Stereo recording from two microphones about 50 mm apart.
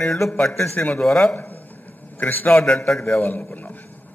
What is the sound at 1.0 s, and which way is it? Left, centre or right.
Speech, centre.